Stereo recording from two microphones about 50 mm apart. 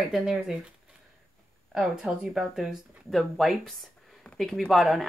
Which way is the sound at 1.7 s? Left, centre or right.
Centre.